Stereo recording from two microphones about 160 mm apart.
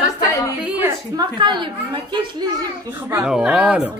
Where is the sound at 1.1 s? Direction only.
30° right (ahead or behind).